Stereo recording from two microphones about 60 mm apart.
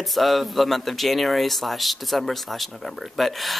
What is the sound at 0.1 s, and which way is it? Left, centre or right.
Speech, centre.